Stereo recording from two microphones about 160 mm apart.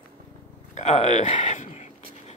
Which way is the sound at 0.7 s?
40° left (ahead or behind).